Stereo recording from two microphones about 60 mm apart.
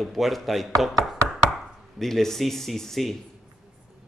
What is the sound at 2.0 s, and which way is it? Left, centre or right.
Speech, centre.